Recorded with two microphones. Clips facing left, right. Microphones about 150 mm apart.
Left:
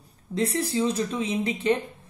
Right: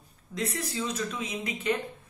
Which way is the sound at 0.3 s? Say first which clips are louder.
Left 7 dB; 30° left (ahead or behind).